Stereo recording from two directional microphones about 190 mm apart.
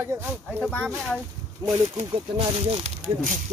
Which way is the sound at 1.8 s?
35° right (ahead or behind).